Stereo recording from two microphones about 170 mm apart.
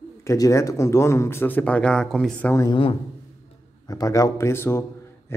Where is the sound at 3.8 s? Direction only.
20° left (ahead or behind).